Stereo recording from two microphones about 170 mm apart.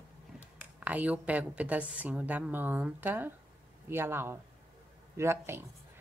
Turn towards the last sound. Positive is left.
turn(degrees=-15)  # may be behind; listen again after turning